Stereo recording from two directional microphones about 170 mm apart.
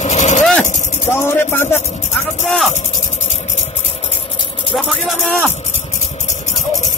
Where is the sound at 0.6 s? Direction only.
45° left (ahead or behind).